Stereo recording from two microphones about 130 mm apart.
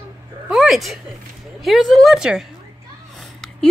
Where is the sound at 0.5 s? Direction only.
Centre (ahead or behind).